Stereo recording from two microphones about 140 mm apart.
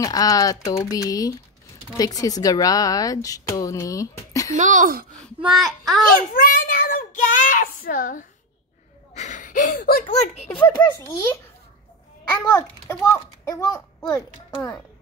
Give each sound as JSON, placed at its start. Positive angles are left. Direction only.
{"t": 0.0, "sound": "a woman's voice", "side_deg": 25}
{"t": 4.6, "sound": "speech", "side_deg": -65}
{"t": 5.4, "sound": "a child's voice", "side_deg": 0}
{"t": 6.3, "sound": "a child's voice", "side_deg": 70}
{"t": 9.1, "sound": "speech", "side_deg": 60}
{"t": 10.3, "sound": "a child's voice", "side_deg": 50}
{"t": 12.3, "sound": "a woman's voice", "side_deg": 25}